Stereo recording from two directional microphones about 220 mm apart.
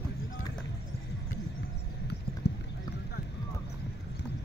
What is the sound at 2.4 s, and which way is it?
Clip-clop, 50° left (ahead or behind).